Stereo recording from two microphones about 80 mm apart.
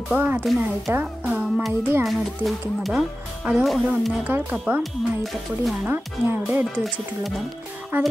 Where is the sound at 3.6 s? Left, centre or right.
Centre.